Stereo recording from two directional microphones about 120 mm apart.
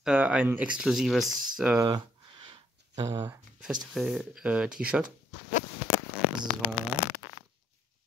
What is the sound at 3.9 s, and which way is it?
Speech, 5° right (ahead or behind).